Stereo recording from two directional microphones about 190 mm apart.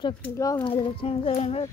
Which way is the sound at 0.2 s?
15° left (ahead or behind).